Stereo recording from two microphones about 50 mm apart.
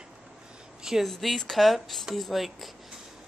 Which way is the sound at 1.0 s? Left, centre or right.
Centre.